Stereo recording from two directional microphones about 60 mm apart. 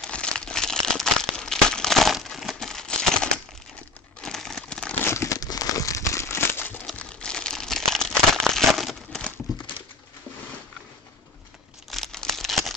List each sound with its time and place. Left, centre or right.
0.1 s crumpling: centre
2.2 s a sound: centre
4.2 s crumpling: centre
5.0 s crumpling: left
5.3 s crumpling: left
7.0 s crumpling: centre
11.9 s crumpling: centre